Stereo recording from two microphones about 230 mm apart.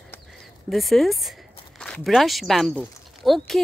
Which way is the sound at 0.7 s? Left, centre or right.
Centre.